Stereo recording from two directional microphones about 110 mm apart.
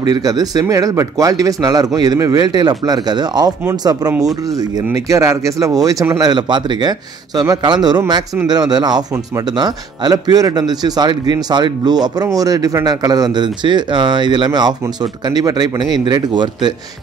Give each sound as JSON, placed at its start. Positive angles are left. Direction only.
{"t": 0.0, "sound": "a man's voice", "side_deg": -35}
{"t": 4.9, "sound": "a man's voice", "side_deg": -30}